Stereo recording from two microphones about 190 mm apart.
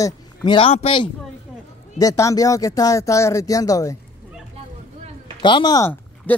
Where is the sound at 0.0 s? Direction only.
20° left (ahead or behind).